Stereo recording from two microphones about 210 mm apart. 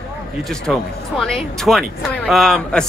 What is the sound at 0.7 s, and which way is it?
A man's voice, centre (ahead or behind).